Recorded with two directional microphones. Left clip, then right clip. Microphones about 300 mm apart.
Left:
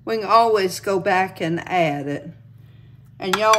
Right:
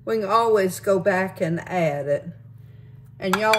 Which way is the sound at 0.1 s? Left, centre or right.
Centre.